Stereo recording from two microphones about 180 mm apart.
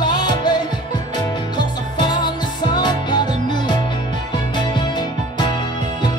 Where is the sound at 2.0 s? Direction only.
25° left (ahead or behind).